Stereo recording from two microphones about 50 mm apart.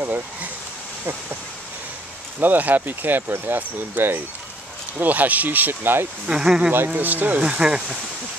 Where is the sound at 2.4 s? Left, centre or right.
Right.